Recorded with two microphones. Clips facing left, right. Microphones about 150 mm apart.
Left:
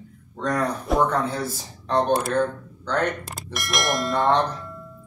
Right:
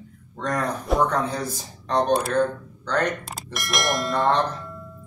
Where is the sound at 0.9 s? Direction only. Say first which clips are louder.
Even; 5° left (ahead or behind).